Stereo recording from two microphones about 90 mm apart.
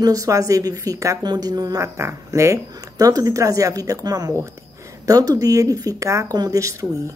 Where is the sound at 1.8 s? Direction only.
30° right (ahead or behind).